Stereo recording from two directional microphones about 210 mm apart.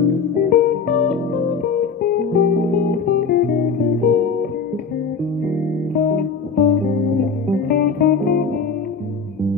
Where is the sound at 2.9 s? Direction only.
45° left (ahead or behind).